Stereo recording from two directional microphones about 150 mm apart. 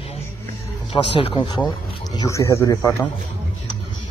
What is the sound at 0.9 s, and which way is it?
A man's voice, 35° left (ahead or behind).